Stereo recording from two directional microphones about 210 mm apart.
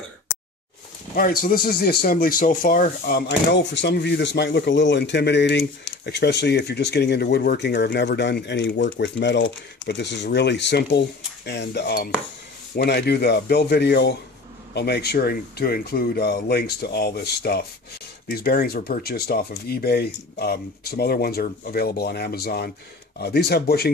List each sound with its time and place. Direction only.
1.1 s speech: 45° left (ahead or behind)